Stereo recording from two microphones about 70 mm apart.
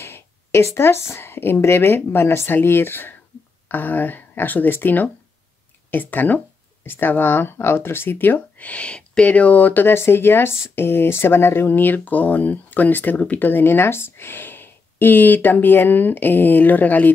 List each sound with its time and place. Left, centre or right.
0.0 s speech: left